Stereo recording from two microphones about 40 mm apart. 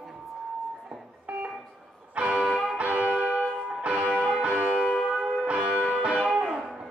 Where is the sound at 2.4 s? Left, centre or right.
Centre.